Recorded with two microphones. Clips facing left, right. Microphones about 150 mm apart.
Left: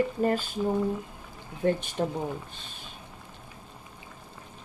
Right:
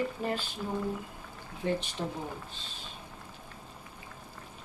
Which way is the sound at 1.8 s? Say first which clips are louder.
Left 6 dB; 50° left (ahead or behind).